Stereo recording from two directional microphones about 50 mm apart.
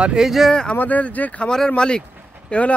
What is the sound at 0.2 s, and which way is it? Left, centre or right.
Speech, centre.